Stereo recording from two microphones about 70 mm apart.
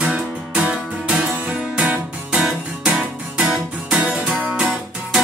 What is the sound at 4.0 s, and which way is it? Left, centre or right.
Music, centre.